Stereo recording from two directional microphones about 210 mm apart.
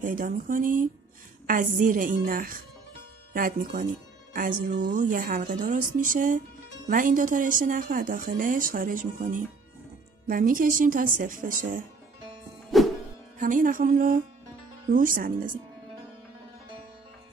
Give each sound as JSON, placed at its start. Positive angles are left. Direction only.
{"t": 0.0, "sound": "a woman's voice", "side_deg": -40}
{"t": 12.7, "sound": "music", "side_deg": 0}
{"t": 13.4, "sound": "a woman's voice", "side_deg": -40}